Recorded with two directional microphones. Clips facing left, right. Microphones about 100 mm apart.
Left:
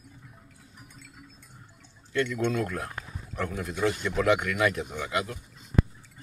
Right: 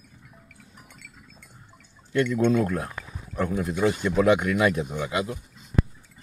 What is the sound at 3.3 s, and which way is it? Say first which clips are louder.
A man's voice: right 5 dB; 15° right (ahead or behind).